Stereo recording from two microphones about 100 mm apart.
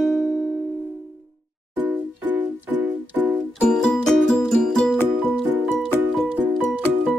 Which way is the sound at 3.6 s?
10° left (ahead or behind).